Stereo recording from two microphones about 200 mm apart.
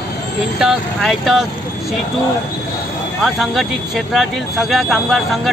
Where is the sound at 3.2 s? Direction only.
Centre (ahead or behind).